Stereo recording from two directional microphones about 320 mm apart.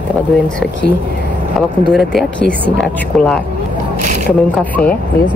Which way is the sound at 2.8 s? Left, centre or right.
Centre.